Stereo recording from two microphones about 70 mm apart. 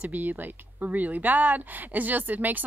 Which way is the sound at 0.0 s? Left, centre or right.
Right.